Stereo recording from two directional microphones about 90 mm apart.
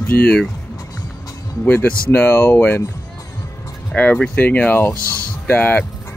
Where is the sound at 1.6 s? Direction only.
20° left (ahead or behind).